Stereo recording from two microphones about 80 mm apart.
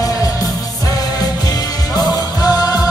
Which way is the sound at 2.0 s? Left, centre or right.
Left.